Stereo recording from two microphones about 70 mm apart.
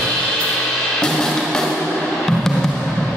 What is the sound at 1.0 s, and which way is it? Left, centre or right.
Music, centre.